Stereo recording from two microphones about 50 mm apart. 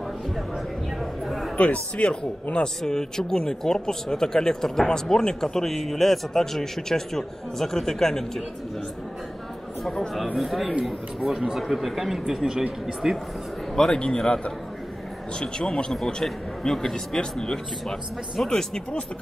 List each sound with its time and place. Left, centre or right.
1.2 s chatter: centre
1.6 s speech: left
2.8 s speech: centre
10.1 s speech: centre
13.7 s speech: centre